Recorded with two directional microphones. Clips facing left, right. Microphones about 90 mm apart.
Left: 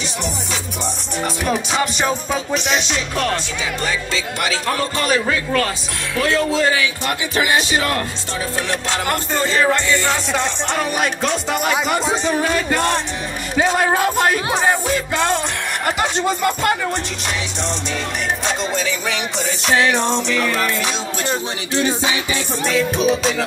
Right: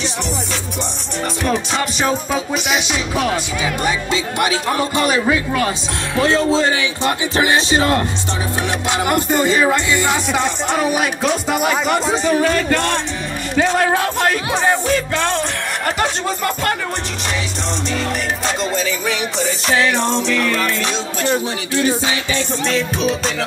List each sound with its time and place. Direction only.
1.2 s music: centre (ahead or behind)
3.8 s a man's voice: 20° right (ahead or behind)
6.1 s speech: 25° right (ahead or behind)
8.8 s music: 15° right (ahead or behind); by 16.1 s 10° left (ahead or behind)
18.4 s music: centre (ahead or behind)
21.2 s music: 20° left (ahead or behind)
22.3 s music: 5° left (ahead or behind)